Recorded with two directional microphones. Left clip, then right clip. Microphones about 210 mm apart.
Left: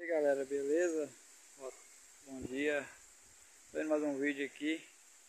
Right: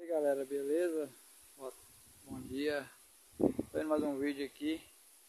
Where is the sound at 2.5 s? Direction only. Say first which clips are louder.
Left 1 dB; 10° right (ahead or behind).